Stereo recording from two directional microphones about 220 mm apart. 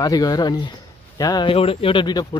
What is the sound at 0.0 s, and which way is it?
Speech, 15° left (ahead or behind).